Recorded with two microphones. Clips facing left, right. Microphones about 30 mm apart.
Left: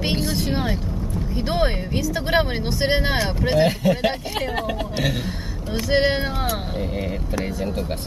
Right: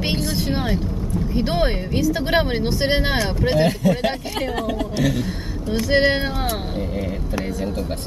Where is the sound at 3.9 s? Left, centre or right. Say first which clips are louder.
Even; centre.